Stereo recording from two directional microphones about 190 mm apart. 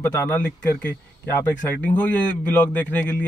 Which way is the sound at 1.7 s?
5° left (ahead or behind).